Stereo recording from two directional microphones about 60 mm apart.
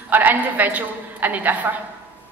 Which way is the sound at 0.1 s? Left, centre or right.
Right.